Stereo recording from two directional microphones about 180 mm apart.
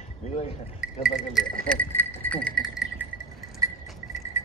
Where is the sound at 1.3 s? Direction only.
5° left (ahead or behind).